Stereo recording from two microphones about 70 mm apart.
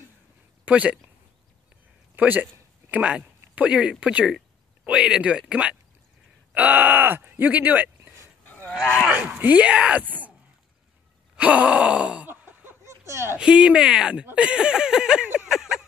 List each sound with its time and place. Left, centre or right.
0.7 s speech: centre
2.1 s speech: right
4.0 s groan: centre
6.5 s speech: right
9.1 s speech: centre
11.3 s groan: centre
12.3 s a sound: right
13.0 s speech: right
13.4 s groan: centre
15.4 s a sound: centre